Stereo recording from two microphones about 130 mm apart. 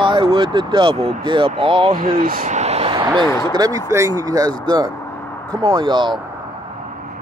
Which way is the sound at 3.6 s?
25° right (ahead or behind).